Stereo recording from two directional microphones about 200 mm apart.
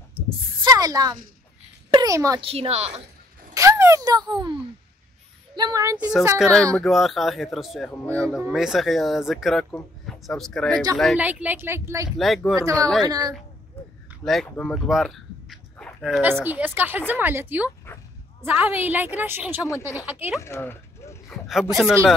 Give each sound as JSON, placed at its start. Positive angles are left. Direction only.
{"t": 0.7, "sound": "a sound", "side_deg": -20}
{"t": 1.9, "sound": "a child's voice", "side_deg": -20}
{"t": 2.4, "sound": "a woman's voice", "side_deg": -30}
{"t": 3.5, "sound": "a woman's voice", "side_deg": -15}
{"t": 6.3, "sound": "speech", "side_deg": 5}
{"t": 8.3, "sound": "a woman's voice", "side_deg": -5}
{"t": 12.2, "sound": "speech", "side_deg": 0}
{"t": 13.0, "sound": "a woman's voice", "side_deg": -20}
{"t": 14.2, "sound": "a woman's voice", "side_deg": 0}
{"t": 20.3, "sound": "speech", "side_deg": 15}
{"t": 21.3, "sound": "speech", "side_deg": 0}